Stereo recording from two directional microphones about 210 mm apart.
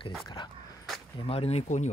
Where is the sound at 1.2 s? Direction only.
30° left (ahead or behind).